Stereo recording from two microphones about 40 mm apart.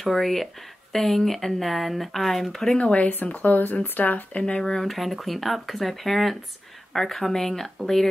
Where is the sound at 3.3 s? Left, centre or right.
Left.